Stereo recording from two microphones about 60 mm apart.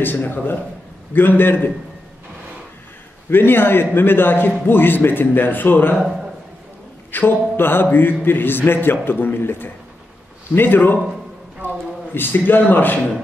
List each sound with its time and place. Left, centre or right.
0.0 s a man's voice: left
3.3 s a man's voice: left
7.1 s a man's voice: left